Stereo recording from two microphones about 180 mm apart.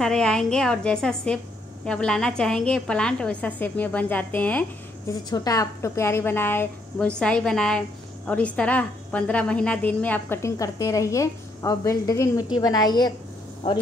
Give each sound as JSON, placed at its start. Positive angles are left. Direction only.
{"t": 0.0, "sound": "a woman's voice", "side_deg": 5}
{"t": 5.3, "sound": "a woman's voice", "side_deg": 20}